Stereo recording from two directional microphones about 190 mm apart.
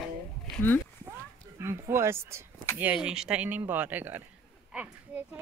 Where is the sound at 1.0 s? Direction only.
15° right (ahead or behind).